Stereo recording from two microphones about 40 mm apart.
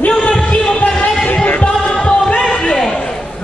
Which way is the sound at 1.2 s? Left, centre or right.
Left.